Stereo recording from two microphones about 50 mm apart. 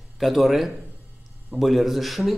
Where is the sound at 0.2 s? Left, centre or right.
Centre.